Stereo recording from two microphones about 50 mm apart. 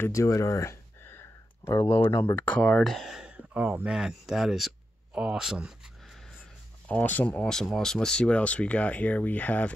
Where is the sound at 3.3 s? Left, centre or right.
Right.